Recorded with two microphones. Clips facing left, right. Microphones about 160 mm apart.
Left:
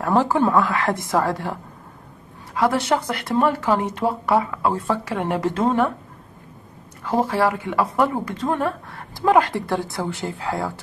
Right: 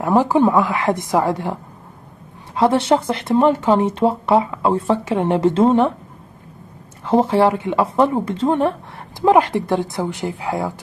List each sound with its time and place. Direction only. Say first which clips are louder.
0.0 s speech: right 4 dB; 15° right (ahead or behind)
7.1 s speech: right 5 dB; 25° right (ahead or behind)